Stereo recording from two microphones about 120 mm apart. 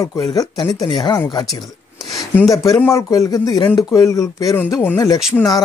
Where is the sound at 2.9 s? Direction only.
25° left (ahead or behind).